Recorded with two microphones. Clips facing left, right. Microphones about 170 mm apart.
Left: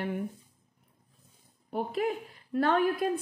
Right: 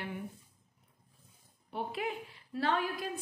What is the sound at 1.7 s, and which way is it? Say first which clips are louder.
A woman's voice: left 6 dB; 45° left (ahead or behind).